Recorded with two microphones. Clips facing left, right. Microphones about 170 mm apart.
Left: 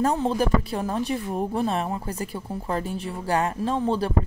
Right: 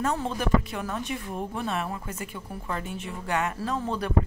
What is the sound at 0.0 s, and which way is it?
Speech, 35° left (ahead or behind).